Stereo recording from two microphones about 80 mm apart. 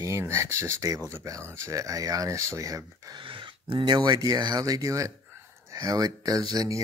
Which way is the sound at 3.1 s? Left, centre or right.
Right.